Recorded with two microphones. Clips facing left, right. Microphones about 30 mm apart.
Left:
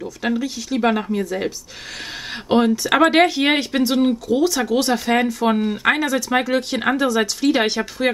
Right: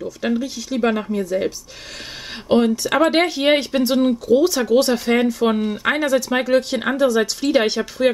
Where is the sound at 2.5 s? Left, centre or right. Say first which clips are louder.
Even; centre.